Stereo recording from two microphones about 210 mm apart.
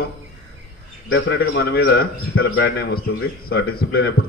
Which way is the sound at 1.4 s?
50° left (ahead or behind).